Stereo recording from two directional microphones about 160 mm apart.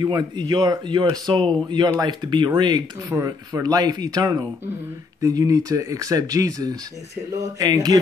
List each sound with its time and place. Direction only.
0.0 s speech: 25° right (ahead or behind)